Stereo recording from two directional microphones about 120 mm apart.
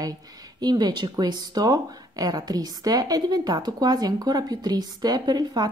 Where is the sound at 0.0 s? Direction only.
35° right (ahead or behind).